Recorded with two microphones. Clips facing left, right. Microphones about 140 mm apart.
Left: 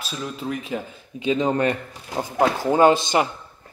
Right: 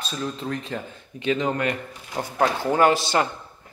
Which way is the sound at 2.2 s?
15° left (ahead or behind).